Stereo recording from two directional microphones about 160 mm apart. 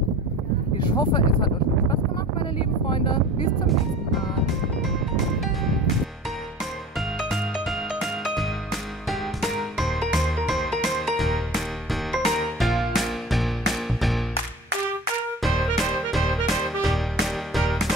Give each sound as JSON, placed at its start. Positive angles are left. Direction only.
{"t": 0.7, "sound": "speech", "side_deg": 25}
{"t": 3.6, "sound": "speech", "side_deg": 0}
{"t": 5.4, "sound": "speech", "side_deg": 0}
{"t": 7.2, "sound": "music", "side_deg": 0}
{"t": 15.4, "sound": "music", "side_deg": 0}